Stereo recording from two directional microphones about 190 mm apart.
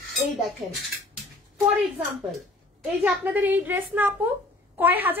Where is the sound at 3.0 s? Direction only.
10° right (ahead or behind).